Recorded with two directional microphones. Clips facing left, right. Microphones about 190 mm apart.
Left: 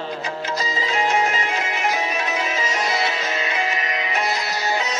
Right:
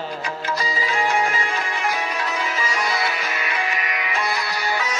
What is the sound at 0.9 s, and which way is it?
Music, 20° left (ahead or behind).